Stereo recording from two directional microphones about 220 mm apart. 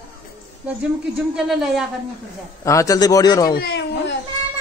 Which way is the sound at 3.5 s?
50° left (ahead or behind).